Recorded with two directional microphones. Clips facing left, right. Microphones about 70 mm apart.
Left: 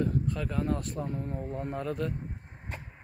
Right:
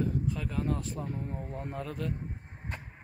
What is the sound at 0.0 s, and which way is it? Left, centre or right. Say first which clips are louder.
Speech: left 2 dB; centre.